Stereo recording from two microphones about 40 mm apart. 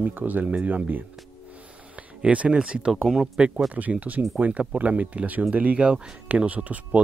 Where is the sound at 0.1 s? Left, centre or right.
Right.